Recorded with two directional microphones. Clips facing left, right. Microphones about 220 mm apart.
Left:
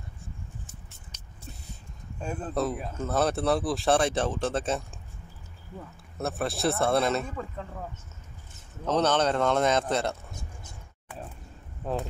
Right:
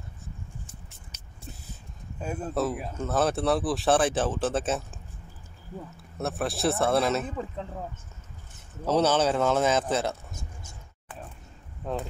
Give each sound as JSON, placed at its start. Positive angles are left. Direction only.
{"t": 2.1, "sound": "speech", "side_deg": -5}
{"t": 6.1, "sound": "speech", "side_deg": 0}
{"t": 7.2, "sound": "speech", "side_deg": -20}
{"t": 8.8, "sound": "speech", "side_deg": -10}
{"t": 11.8, "sound": "speech", "side_deg": 5}